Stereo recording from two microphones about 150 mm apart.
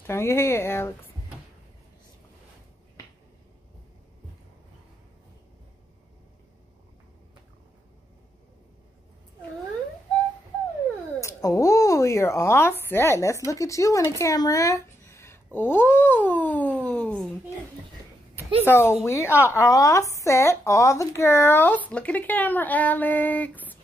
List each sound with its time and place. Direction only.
0.0 s speech: 15° left (ahead or behind)
11.1 s speech: 20° left (ahead or behind)
16.8 s a sound: 10° left (ahead or behind)
18.6 s speech: 15° left (ahead or behind)